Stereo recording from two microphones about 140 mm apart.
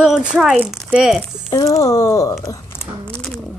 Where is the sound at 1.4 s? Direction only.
25° left (ahead or behind).